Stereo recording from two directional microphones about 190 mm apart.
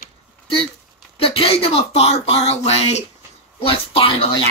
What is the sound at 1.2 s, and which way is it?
Speech, 30° left (ahead or behind).